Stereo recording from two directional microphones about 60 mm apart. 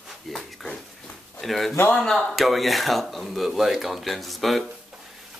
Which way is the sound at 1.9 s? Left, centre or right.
Centre.